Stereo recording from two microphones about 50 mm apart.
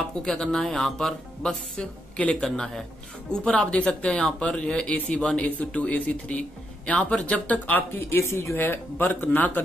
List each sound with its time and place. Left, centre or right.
0.2 s speech: centre
3.3 s speech: left
4.9 s speech: left
5.2 s speech: left
8.1 s speech: left
8.5 s speech: left